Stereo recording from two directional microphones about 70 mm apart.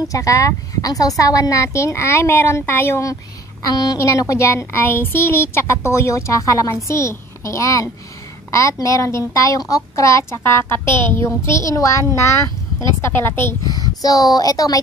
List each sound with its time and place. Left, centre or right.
0.1 s speech: left
3.6 s a woman's voice: left
4.0 s speech: left
13.0 s speech: left
13.7 s speech: left